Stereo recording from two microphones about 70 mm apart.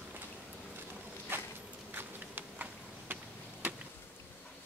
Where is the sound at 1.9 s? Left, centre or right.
Right.